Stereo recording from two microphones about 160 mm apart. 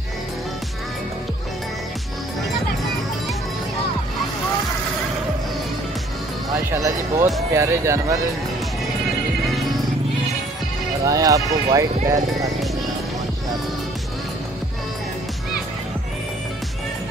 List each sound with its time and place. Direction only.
6.7 s speech: 20° right (ahead or behind)
11.1 s speech: 20° right (ahead or behind)